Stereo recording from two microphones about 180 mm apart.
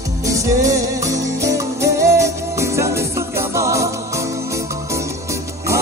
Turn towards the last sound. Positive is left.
turn(degrees=-15)  # may be behind; listen again after turning